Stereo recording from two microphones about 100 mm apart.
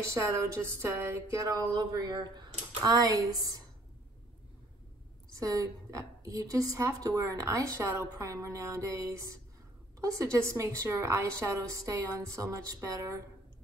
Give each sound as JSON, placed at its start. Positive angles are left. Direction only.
{"t": 0.1, "sound": "a woman's voice", "side_deg": -30}
{"t": 5.3, "sound": "a woman's voice", "side_deg": -35}